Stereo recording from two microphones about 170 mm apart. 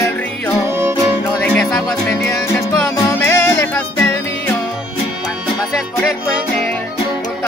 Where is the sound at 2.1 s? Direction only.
10° left (ahead or behind).